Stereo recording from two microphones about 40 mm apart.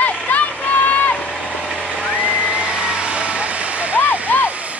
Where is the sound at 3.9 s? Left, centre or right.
Left.